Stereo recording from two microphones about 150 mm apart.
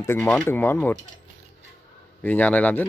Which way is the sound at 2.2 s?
10° left (ahead or behind).